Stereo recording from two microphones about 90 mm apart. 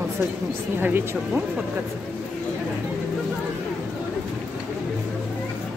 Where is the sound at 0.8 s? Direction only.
20° right (ahead or behind).